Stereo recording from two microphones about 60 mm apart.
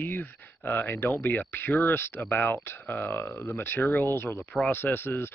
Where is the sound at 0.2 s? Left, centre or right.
Left.